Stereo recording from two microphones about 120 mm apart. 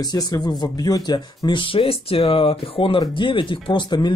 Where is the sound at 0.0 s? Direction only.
35° left (ahead or behind).